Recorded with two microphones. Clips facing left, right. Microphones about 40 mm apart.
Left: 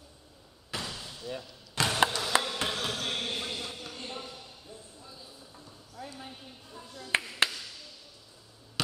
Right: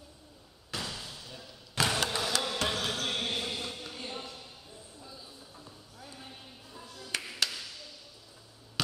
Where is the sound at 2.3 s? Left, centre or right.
Left.